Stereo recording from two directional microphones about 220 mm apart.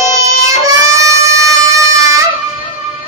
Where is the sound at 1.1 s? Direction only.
15° right (ahead or behind).